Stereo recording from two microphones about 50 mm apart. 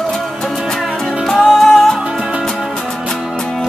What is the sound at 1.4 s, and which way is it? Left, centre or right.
Music, centre.